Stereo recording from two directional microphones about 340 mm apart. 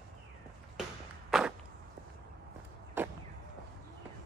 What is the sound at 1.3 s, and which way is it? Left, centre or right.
Walk, centre.